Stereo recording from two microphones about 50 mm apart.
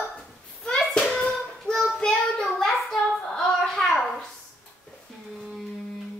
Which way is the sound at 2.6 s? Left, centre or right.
Centre.